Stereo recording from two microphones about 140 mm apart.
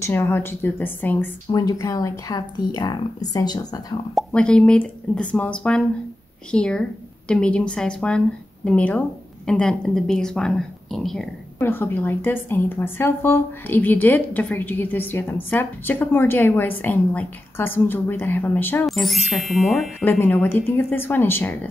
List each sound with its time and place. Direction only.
0.0 s a woman's voice: 15° left (ahead or behind)
1.5 s speech: 25° left (ahead or behind)
4.1 s a woman's voice: 5° left (ahead or behind)
11.6 s a woman's voice: 15° left (ahead or behind)
18.9 s a woman's voice: centre (ahead or behind); by 21.5 s 15° left (ahead or behind)